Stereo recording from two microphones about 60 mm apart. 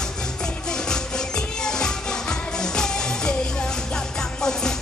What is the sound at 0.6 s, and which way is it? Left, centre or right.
Music, centre.